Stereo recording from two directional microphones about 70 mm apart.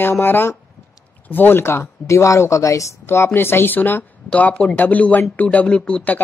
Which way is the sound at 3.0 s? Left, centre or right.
Left.